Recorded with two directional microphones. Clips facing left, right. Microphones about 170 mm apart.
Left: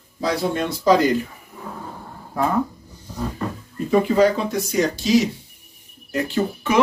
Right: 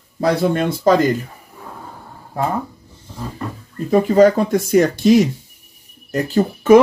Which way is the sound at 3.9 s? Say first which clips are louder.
Right 5 dB; 40° right (ahead or behind).